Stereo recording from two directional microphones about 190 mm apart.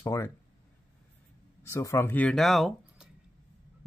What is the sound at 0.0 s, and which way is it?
Speech, 15° left (ahead or behind).